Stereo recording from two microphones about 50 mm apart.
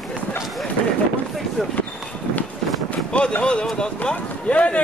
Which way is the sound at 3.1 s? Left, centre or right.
Centre.